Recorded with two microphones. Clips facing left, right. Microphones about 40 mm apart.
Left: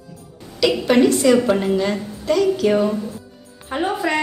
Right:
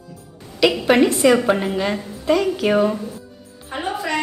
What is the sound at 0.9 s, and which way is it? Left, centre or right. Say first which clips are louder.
A woman's voice: left 1 dB; centre.